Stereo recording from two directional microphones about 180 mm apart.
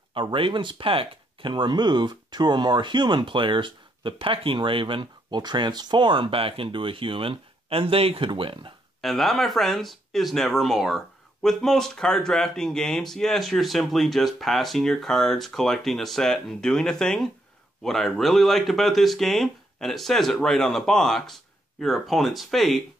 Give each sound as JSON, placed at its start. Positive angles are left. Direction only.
{"t": 0.1, "sound": "speech", "side_deg": -30}
{"t": 9.0, "sound": "speech", "side_deg": 0}